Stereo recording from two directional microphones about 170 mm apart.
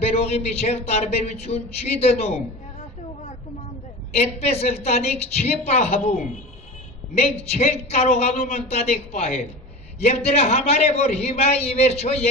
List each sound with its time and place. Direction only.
0.0 s a man's voice: 40° left (ahead or behind)
4.1 s a man's voice: 40° left (ahead or behind)